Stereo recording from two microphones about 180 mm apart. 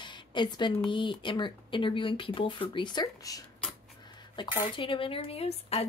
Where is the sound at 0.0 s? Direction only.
25° left (ahead or behind).